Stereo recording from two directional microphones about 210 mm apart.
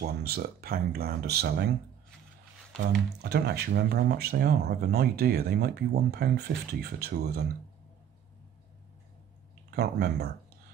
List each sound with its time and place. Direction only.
0.0 s speech: 45° right (ahead or behind)
3.2 s speech: 50° right (ahead or behind)
9.7 s speech: 50° right (ahead or behind)